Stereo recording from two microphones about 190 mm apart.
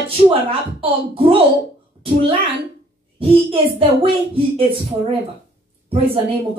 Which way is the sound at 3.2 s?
30° right (ahead or behind).